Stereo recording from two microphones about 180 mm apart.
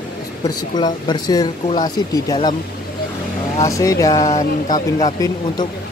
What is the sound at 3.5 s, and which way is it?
Speech, 15° left (ahead or behind).